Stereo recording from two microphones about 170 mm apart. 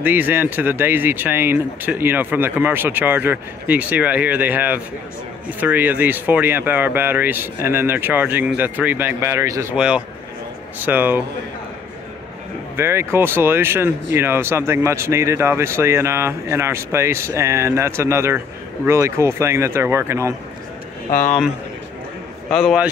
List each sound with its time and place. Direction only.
0.0 s speech: 10° right (ahead or behind)
9.8 s speech: 5° right (ahead or behind)
12.7 s speech: 15° right (ahead or behind)
22.5 s a man's voice: centre (ahead or behind)